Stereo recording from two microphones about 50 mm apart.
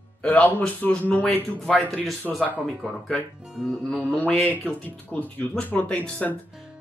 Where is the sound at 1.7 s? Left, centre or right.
Centre.